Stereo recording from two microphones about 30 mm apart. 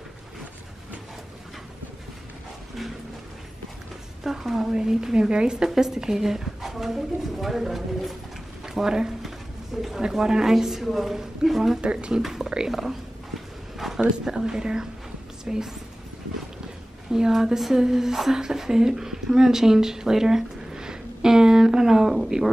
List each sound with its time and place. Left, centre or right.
4.2 s a woman's voice: centre
4.7 s a woman's voice: right
5.6 s speech: centre
8.6 s a woman's voice: centre
9.8 s speech: centre
10.1 s a woman's voice: right
10.4 s speech: centre
11.8 s speech: right
12.6 s speech: centre
13.7 s a sound: centre
14.2 s a woman's voice: right
17.1 s a woman's voice: centre